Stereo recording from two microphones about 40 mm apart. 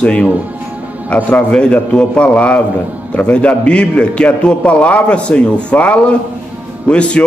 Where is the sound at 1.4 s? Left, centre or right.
Left.